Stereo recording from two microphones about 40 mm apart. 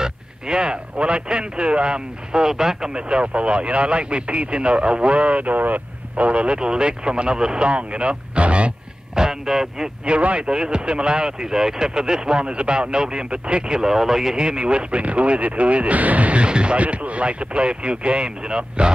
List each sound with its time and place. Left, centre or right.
0.0 s speech: centre
2.9 s speech: right
9.1 s speech: centre
10.0 s speech: right; by 14.3 s centre
14.3 s speech: right